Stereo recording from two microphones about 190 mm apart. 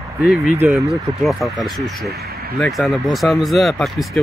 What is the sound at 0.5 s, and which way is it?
Speech, 10° right (ahead or behind).